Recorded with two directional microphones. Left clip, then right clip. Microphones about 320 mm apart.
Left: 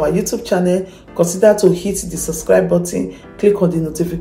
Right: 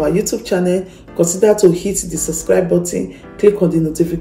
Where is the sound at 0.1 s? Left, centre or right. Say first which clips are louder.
Even; centre.